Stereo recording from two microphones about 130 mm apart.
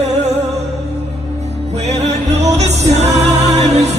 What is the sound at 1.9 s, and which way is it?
Music, 55° right (ahead or behind).